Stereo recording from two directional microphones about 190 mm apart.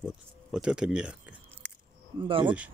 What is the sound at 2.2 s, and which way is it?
Speech, 25° right (ahead or behind).